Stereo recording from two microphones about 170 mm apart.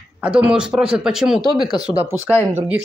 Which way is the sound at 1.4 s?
25° left (ahead or behind).